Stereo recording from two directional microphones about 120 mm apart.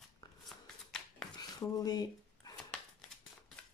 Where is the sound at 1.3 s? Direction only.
30° left (ahead or behind).